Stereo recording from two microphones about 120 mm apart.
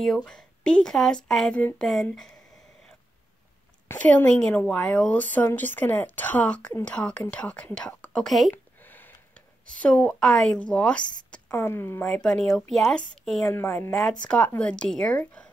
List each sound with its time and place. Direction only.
0.0 s speech: 5° left (ahead or behind)
3.9 s a woman's voice: 15° left (ahead or behind)
9.8 s a woman's voice: 10° left (ahead or behind)
11.4 s speech: 25° left (ahead or behind)
12.1 s speech: 5° left (ahead or behind)
13.5 s speech: 20° left (ahead or behind)
14.2 s a woman's voice: 10° left (ahead or behind)